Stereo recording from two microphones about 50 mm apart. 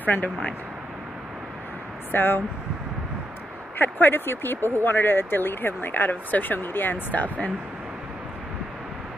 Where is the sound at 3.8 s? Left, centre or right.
Left.